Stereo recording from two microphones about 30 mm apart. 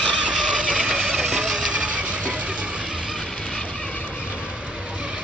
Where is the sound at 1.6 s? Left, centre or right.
Right.